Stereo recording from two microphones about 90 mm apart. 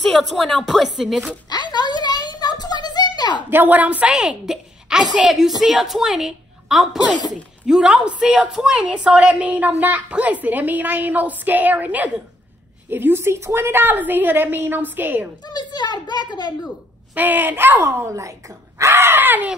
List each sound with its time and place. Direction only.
0.4 s speech: centre (ahead or behind)
1.5 s a sound: 50° left (ahead or behind)
3.4 s a woman's voice: 20° right (ahead or behind)
15.4 s a child's voice: 50° left (ahead or behind)
17.1 s a woman's voice: 20° right (ahead or behind)
17.8 s speech: 35° right (ahead or behind)
18.8 s a sound: 30° right (ahead or behind)